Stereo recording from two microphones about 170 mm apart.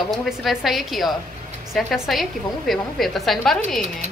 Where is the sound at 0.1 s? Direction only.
Centre (ahead or behind).